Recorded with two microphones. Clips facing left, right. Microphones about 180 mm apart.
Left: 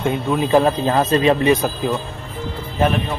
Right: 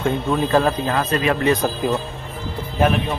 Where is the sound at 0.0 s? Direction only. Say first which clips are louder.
Left 1 dB; 15° left (ahead or behind).